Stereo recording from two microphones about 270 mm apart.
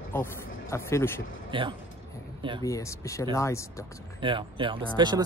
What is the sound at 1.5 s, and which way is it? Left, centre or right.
Speech, centre.